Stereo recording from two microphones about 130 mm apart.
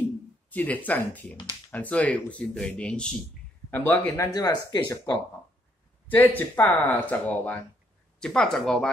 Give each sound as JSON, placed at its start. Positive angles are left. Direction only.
{"t": 0.5, "sound": "speech", "side_deg": 10}
{"t": 1.3, "sound": "speech", "side_deg": 35}
{"t": 1.7, "sound": "speech", "side_deg": 10}
{"t": 4.3, "sound": "speech", "side_deg": 30}
{"t": 6.0, "sound": "speech", "side_deg": 15}